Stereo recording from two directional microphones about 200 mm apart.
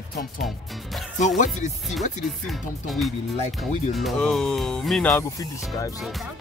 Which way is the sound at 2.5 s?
Centre (ahead or behind).